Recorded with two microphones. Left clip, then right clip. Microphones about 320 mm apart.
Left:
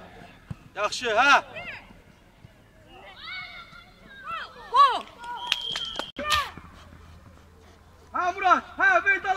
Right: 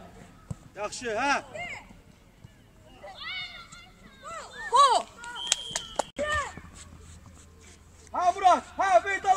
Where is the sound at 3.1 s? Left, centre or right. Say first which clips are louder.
Right 1 dB; centre.